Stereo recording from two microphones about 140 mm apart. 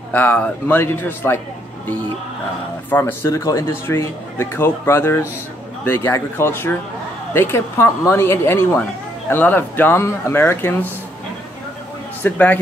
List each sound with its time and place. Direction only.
0.1 s speech: 10° left (ahead or behind)
2.9 s speech: 15° left (ahead or behind)
12.2 s speech: 10° left (ahead or behind)